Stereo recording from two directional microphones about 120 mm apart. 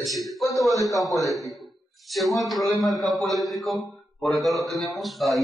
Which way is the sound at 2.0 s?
Centre (ahead or behind).